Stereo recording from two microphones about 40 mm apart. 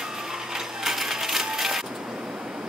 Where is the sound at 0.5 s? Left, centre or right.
Centre.